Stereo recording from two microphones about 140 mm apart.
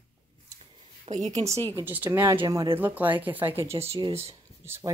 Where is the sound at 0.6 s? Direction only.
50° right (ahead or behind).